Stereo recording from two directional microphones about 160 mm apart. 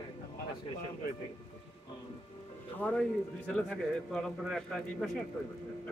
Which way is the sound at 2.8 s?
5° left (ahead or behind).